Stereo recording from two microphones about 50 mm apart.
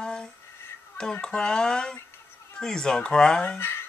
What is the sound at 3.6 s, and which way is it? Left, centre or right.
Speech, left.